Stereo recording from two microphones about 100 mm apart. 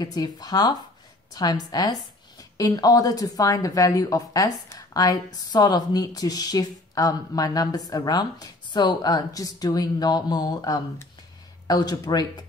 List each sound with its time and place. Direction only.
0.0 s a woman's voice: 40° left (ahead or behind)